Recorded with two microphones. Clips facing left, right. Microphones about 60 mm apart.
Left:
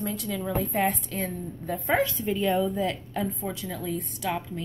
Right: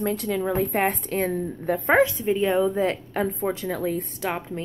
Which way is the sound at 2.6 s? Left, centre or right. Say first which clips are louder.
Right 5 dB; right.